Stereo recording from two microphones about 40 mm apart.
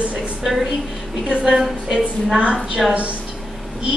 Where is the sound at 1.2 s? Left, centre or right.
Right.